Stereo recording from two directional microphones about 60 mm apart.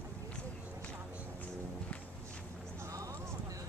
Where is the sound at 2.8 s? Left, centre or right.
Right.